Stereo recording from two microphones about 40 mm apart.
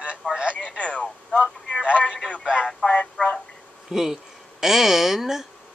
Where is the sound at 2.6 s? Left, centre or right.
Left.